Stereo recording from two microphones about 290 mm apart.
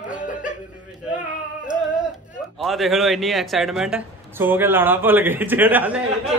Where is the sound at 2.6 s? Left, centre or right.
Centre.